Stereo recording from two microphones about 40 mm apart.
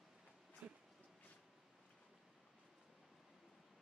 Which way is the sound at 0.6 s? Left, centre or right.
Right.